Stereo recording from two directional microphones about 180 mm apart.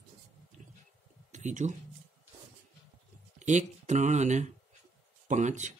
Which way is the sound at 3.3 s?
40° right (ahead or behind).